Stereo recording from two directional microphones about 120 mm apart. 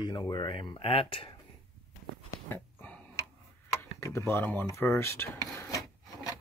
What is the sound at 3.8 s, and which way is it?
Speech, 25° left (ahead or behind).